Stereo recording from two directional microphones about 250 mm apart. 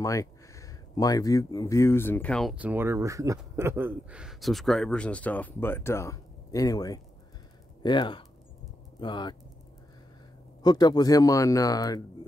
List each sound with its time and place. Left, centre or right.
0.0 s speech: centre
10.6 s speech: centre